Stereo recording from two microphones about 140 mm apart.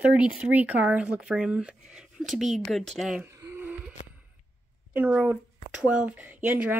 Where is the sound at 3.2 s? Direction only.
20° right (ahead or behind).